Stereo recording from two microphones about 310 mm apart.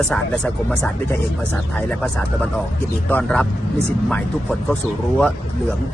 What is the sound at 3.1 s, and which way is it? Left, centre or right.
Speech, centre.